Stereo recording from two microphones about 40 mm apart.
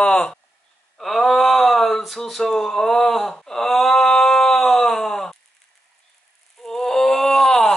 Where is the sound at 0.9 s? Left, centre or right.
Centre.